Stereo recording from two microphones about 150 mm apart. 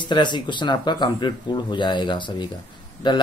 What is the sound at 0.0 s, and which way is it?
Speech, 30° left (ahead or behind).